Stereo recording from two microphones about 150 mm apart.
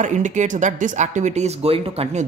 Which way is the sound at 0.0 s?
55° right (ahead or behind).